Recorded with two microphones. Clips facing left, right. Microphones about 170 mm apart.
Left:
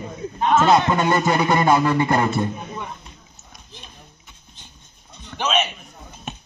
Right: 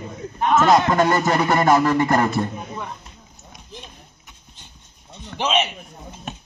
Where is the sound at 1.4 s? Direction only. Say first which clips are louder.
Right 1 dB; 15° left (ahead or behind).